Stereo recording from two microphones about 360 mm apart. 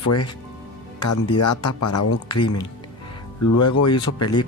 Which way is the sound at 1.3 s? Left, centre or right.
Left.